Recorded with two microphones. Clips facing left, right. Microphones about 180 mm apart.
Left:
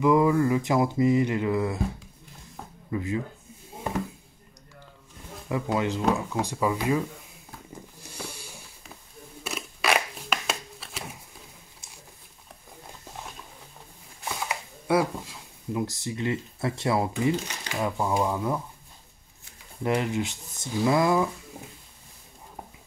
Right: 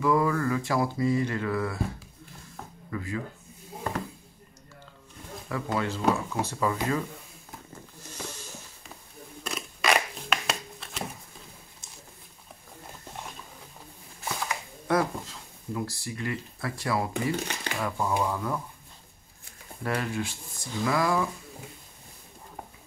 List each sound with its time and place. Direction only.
0.0 s mantra: 20° left (ahead or behind)
2.9 s speech: 20° left (ahead or behind)
5.5 s speech: 15° left (ahead or behind)
8.0 s a sound: 10° left (ahead or behind)
9.4 s scissors: 5° left (ahead or behind)
14.9 s speech: 10° left (ahead or behind)
17.2 s mantra: 20° left (ahead or behind)
19.8 s mantra: 20° left (ahead or behind)